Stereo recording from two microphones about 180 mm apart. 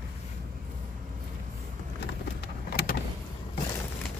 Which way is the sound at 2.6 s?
60° left (ahead or behind).